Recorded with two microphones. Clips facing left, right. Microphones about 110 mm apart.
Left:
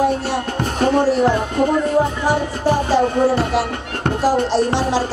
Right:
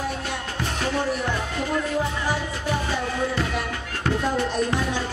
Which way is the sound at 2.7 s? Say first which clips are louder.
Left 10 dB; 35° left (ahead or behind).